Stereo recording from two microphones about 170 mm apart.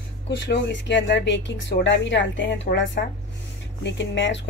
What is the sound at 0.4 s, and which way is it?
Speech, 90° left.